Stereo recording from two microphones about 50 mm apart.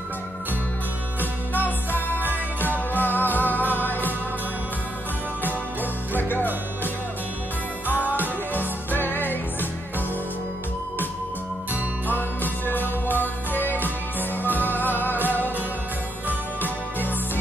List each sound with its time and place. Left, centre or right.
2.0 s music: right
3.0 s music: left
6.1 s music: left
8.0 s music: left
12.1 s music: left